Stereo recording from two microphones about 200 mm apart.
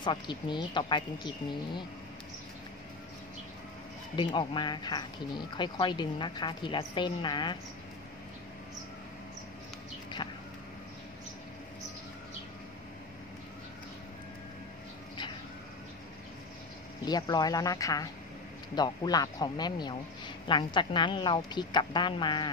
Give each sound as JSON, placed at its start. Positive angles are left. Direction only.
{"t": 0.0, "sound": "speech", "side_deg": 25}
{"t": 4.2, "sound": "speech", "side_deg": 25}
{"t": 17.0, "sound": "speech", "side_deg": 20}